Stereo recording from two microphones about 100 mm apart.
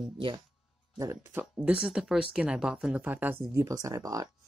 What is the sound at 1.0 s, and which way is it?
Speech, 25° right (ahead or behind).